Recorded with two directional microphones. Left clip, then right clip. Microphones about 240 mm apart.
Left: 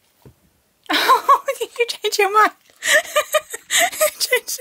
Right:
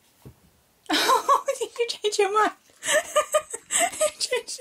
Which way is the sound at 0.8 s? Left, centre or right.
Centre.